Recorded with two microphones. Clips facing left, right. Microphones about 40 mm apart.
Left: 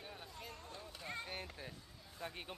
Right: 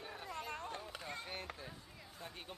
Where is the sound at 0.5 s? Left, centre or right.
Right.